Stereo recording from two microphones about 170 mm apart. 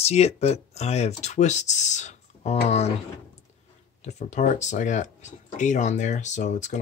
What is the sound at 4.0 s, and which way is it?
Speech, 45° left (ahead or behind).